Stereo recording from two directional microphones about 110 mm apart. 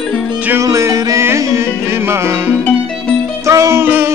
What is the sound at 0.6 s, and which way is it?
Music, 30° right (ahead or behind).